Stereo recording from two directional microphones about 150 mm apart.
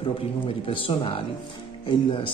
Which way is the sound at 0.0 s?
35° left (ahead or behind).